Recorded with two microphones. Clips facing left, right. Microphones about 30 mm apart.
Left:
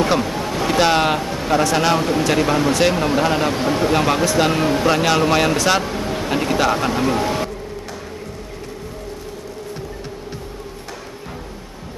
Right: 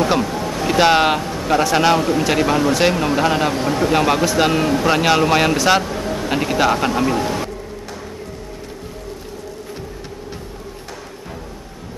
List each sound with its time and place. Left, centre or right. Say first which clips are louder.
0.2 s ocean: even; centre
0.7 s a man's voice: right 2 dB; centre
3.6 s speech: even; centre
3.9 s a man's voice: right 3 dB; centre
4.6 s speech: even; centre
4.8 s a man's voice: right 1 dB; centre
5.9 s a sound: even; centre
6.2 s a man's voice: right 1 dB; centre
7.2 s music: left 1 dB; centre